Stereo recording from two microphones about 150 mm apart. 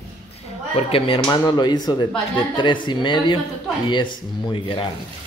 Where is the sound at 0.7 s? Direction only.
35° left (ahead or behind).